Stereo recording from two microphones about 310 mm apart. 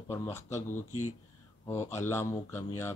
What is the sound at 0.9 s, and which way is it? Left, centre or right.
Speech, left.